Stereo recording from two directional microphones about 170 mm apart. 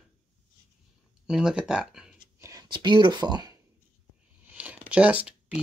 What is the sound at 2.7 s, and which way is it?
Speech, 25° right (ahead or behind).